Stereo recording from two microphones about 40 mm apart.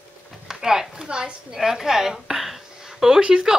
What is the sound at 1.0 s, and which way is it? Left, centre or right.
A woman's voice, right.